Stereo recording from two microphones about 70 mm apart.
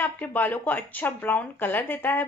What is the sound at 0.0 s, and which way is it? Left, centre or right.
A woman's voice, left.